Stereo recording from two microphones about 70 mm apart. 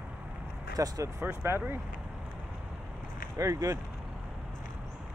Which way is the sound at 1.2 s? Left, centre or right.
Right.